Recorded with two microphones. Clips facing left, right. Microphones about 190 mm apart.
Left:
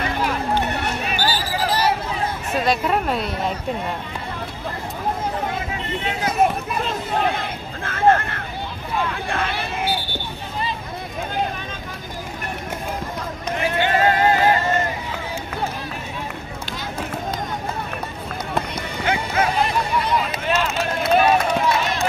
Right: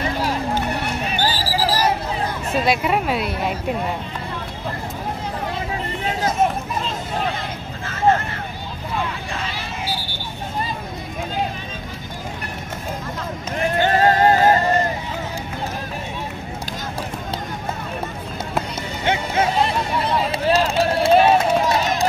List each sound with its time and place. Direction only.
1.1 s basketball bounce: 30° right (ahead or behind)
2.6 s a woman's voice: 5° right (ahead or behind)
6.2 s a sound: 60° left (ahead or behind)
9.3 s vehicle: 55° left (ahead or behind)
13.7 s music: 40° right (ahead or behind)
19.0 s a sound: 25° right (ahead or behind)
20.0 s run: 30° right (ahead or behind)